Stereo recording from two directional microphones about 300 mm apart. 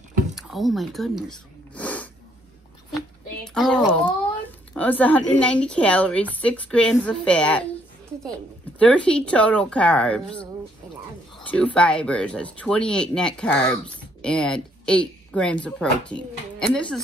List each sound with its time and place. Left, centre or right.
0.4 s a sound: centre
3.4 s speech: centre
8.7 s speech: centre